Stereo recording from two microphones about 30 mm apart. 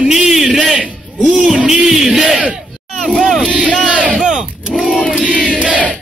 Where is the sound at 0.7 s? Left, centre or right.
Right.